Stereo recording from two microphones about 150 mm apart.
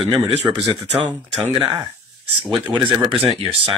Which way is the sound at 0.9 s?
10° right (ahead or behind).